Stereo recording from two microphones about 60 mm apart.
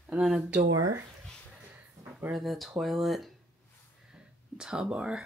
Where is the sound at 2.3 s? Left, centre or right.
Centre.